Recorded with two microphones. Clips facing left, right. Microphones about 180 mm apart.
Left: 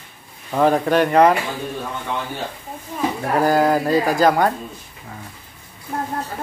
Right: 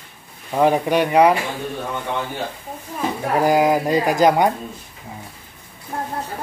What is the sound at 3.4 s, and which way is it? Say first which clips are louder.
Speech: even; 15° right (ahead or behind).